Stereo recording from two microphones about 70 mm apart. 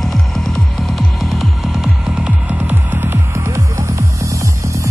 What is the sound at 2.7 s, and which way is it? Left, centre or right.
Music, right.